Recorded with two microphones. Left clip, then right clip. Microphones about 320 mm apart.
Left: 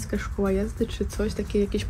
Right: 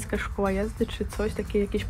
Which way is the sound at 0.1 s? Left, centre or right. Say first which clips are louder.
Left 1 dB; centre.